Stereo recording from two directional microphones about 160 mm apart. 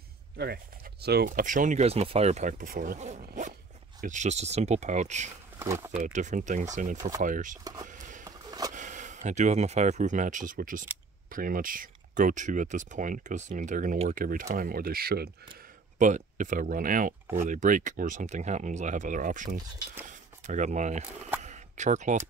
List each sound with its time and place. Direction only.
1.0 s speech: 80° right; by 3.0 s 60° right (ahead or behind)
3.0 s speech: 50° right (ahead or behind)
5.6 s speech: 15° right (ahead or behind)
5.9 s speech: 50° right (ahead or behind)
7.6 s speech: 20° right (ahead or behind)
7.9 s a sound: 50° right (ahead or behind)
8.2 s a sound: 20° right (ahead or behind)
8.7 s speech: 50° right (ahead or behind); by 15.3 s 75° right (ahead or behind)
16.0 s speech: 50° right (ahead or behind)
21.4 s a sound: 50° right (ahead or behind)